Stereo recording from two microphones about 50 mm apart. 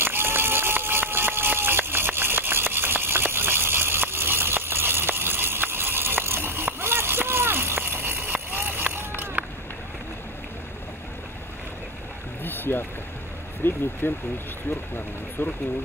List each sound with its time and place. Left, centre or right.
0.0 s run: right
12.4 s boat: left
13.6 s vehicle: left
14.0 s speech: left